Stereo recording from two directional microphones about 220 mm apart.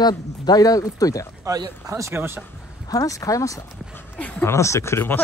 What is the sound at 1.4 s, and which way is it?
Speech, 15° right (ahead or behind).